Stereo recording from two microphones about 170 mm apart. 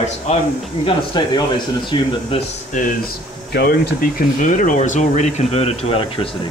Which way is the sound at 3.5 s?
60° left (ahead or behind).